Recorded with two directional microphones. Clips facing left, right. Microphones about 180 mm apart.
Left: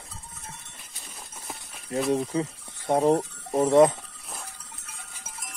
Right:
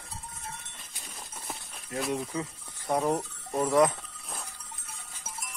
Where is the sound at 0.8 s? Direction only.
5° left (ahead or behind).